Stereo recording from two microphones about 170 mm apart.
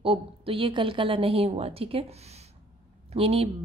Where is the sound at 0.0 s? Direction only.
35° right (ahead or behind).